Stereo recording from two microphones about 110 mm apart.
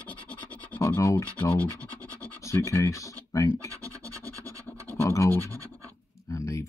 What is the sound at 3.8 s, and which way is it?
Scratch, 30° right (ahead or behind).